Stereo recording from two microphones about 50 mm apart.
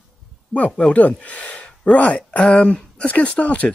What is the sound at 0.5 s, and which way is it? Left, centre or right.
Speech, left.